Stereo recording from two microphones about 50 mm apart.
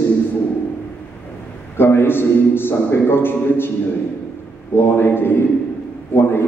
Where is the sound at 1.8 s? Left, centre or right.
Left.